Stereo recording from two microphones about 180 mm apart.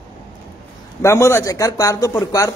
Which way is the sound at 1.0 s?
15° left (ahead or behind).